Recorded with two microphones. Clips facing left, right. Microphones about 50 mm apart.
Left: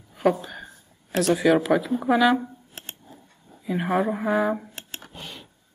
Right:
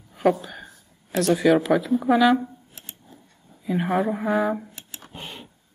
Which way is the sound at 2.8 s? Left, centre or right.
Left.